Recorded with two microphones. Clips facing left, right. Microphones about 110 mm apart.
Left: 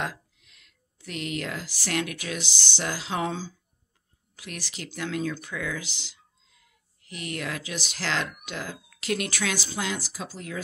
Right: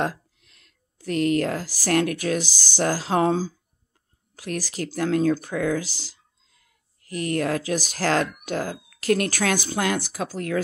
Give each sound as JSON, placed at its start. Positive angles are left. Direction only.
{"t": 0.0, "sound": "speech", "side_deg": -40}